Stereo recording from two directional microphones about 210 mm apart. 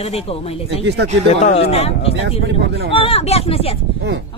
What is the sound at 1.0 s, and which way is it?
Speech, 55° right (ahead or behind).